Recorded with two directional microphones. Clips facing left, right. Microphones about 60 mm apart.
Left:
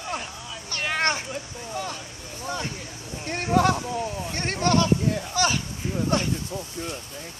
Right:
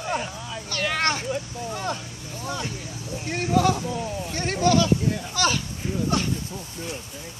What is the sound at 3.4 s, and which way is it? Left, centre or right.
Speech, left.